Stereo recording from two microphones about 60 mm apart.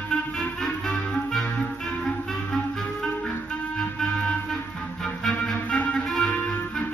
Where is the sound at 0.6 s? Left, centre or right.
Centre.